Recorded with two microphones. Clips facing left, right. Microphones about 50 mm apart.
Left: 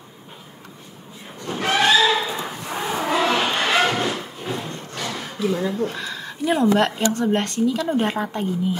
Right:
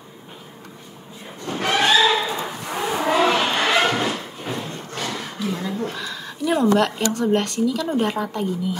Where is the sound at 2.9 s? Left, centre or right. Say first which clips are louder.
Right 2 dB; centre.